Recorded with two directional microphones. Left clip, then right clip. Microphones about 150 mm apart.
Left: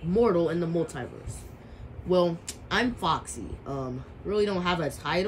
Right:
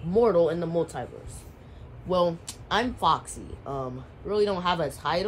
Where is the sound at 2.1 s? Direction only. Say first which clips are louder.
Even; 20° right (ahead or behind).